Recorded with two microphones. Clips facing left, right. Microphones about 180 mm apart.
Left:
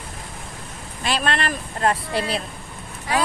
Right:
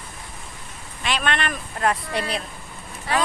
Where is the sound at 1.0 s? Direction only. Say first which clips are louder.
Left 1 dB; 35° left (ahead or behind).